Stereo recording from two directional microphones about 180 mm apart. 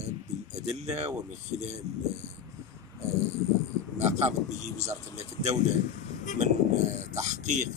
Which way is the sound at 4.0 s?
35° right (ahead or behind).